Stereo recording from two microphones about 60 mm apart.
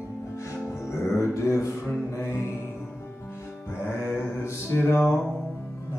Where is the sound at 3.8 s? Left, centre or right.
Left.